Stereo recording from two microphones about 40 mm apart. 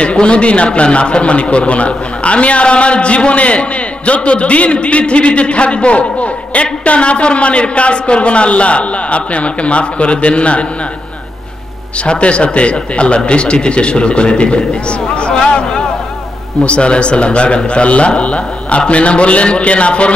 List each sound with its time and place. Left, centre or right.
0.0 s a man's voice: left
12.0 s a man's voice: left